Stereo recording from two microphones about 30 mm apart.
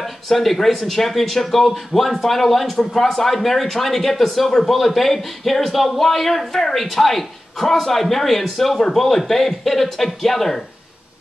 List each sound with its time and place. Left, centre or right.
0.0 s speech: centre
8.7 s speech: centre